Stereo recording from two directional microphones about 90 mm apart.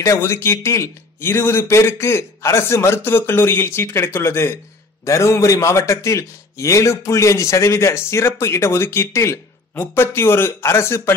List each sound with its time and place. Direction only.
0.0 s a man's voice: 30° left (ahead or behind)